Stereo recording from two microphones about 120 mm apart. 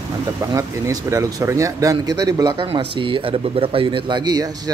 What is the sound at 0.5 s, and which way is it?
Speech, 25° right (ahead or behind).